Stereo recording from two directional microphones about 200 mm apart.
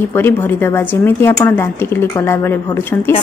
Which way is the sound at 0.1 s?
10° left (ahead or behind).